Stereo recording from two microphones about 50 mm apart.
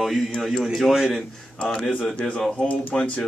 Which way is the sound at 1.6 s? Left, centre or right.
Left.